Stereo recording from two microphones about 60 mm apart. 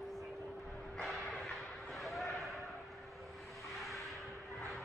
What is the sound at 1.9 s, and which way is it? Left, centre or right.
Basketball bounce, centre.